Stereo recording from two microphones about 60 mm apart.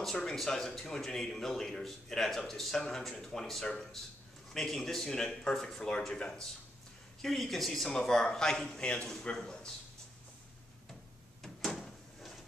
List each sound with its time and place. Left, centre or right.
0.0 s speech: centre
11.4 s door: centre